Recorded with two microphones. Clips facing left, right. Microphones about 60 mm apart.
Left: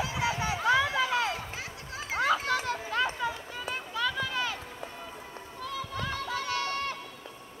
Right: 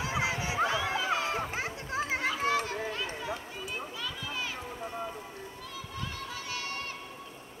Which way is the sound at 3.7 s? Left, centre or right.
Left.